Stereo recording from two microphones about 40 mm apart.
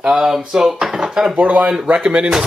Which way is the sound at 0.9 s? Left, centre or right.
Centre.